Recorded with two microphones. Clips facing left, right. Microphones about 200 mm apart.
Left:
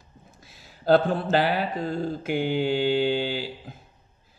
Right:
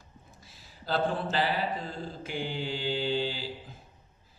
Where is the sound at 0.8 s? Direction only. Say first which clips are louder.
Left 9 dB; 60° left (ahead or behind).